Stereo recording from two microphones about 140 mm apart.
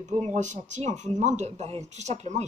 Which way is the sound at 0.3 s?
60° right (ahead or behind).